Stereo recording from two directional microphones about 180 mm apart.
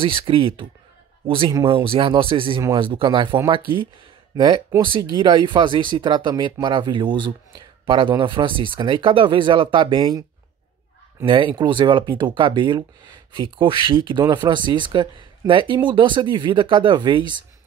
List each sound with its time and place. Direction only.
0.0 s a man's voice: 30° right (ahead or behind)
11.2 s speech: 30° right (ahead or behind)